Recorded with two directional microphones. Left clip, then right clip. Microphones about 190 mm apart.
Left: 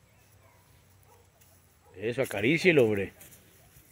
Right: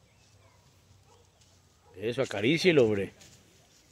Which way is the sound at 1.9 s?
Centre (ahead or behind).